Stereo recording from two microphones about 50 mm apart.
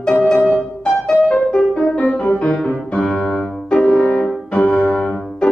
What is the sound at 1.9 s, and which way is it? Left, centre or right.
Music, left.